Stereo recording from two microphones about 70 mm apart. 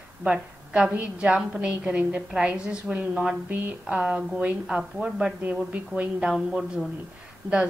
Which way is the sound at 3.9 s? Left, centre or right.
Centre.